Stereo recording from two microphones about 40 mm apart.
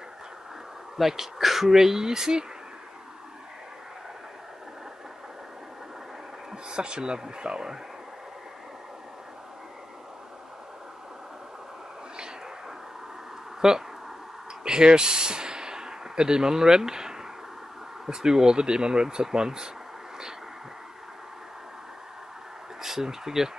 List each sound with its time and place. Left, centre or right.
0.9 s speech: centre
6.5 s speech: right
13.6 s speech: centre
22.8 s speech: centre